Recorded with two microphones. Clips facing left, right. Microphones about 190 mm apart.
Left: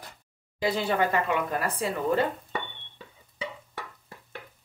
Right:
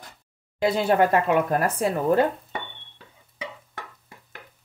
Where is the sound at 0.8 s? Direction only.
50° right (ahead or behind).